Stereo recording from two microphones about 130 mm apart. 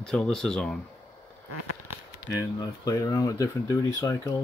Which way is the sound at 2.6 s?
25° left (ahead or behind).